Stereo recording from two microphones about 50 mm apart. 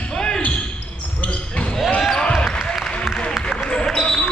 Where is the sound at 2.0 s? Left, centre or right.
Centre.